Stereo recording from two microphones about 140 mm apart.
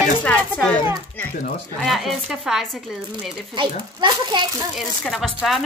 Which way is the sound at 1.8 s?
Centre (ahead or behind).